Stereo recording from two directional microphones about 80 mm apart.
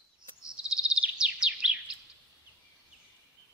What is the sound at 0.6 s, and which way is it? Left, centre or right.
Bird vocalization, centre.